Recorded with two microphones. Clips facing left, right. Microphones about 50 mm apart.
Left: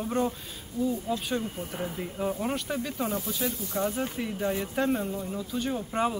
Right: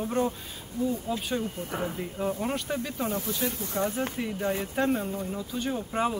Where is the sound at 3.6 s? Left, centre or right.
Right.